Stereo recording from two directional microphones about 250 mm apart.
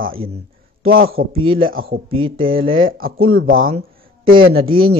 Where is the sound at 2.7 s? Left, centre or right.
Right.